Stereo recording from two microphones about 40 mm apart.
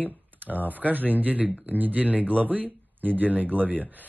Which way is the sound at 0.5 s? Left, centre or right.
Right.